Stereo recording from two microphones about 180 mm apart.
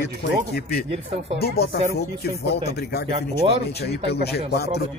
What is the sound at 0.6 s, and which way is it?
Speech, 60° left (ahead or behind).